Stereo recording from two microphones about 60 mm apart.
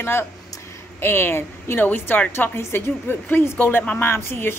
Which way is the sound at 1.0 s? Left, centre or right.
Left.